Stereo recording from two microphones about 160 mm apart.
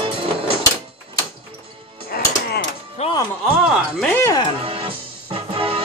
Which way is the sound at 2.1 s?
75° left (ahead or behind).